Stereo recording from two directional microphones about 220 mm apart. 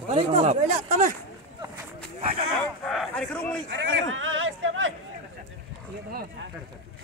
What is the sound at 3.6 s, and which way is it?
Speech, 60° right (ahead or behind).